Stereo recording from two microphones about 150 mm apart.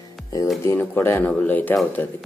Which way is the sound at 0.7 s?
15° left (ahead or behind).